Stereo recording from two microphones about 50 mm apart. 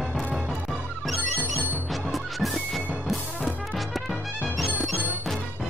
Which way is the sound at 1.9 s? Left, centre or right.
Centre.